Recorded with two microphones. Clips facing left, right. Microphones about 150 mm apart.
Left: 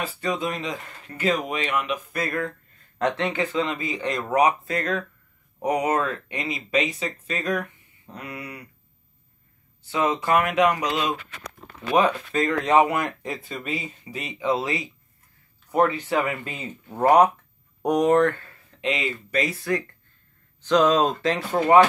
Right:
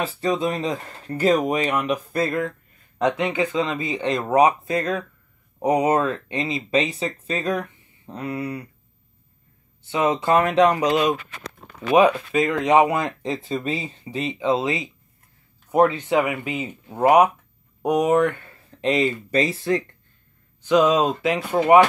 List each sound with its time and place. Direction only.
0.0 s speech: 30° right (ahead or behind)
3.0 s speech: 15° right (ahead or behind); by 8.6 s 30° right (ahead or behind)
9.8 s speech: 25° right (ahead or behind)
18.8 s speech: 40° right (ahead or behind)
20.6 s speech: 10° right (ahead or behind)